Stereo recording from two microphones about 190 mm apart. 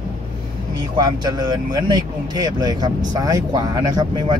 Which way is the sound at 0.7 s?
20° right (ahead or behind).